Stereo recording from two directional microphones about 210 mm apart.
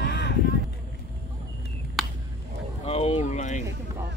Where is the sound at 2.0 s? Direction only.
Centre (ahead or behind).